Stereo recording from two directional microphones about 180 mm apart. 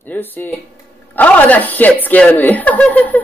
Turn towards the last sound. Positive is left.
turn(degrees=10)  # may be behind; listen again after turning